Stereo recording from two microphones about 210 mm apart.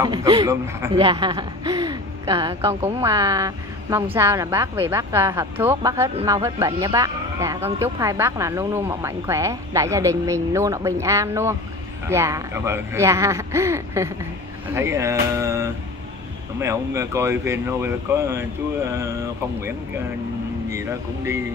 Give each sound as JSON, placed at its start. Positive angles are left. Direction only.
{"t": 0.0, "sound": "a woman's voice", "side_deg": -20}